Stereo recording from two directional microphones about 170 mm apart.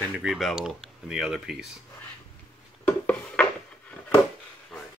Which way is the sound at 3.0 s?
5° left (ahead or behind).